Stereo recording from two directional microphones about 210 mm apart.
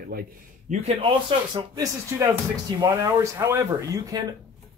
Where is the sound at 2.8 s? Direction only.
15° right (ahead or behind).